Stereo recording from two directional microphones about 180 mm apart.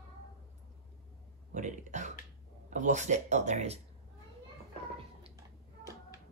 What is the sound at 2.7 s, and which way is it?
Speech, 40° right (ahead or behind).